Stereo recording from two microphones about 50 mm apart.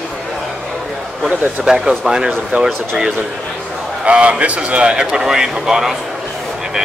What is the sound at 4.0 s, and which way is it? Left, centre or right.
A man's voice, right.